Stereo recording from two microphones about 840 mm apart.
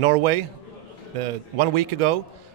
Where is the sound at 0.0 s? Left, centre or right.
Right.